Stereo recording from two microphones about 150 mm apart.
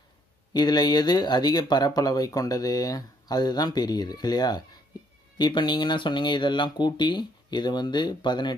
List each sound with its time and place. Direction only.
0.5 s speech: 30° left (ahead or behind)